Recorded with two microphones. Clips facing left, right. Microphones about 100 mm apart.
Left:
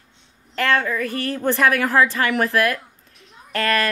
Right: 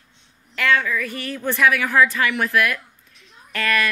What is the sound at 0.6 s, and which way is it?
A woman's voice, 40° left (ahead or behind).